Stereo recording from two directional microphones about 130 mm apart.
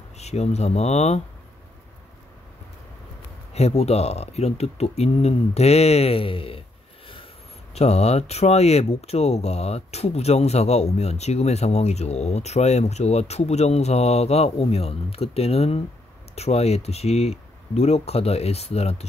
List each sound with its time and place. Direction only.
0.2 s speech: 55° left (ahead or behind)
3.5 s speech: 55° left (ahead or behind)
7.7 s speech: 55° left (ahead or behind)